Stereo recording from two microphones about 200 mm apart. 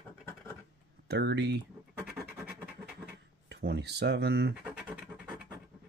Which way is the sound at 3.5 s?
55° right (ahead or behind).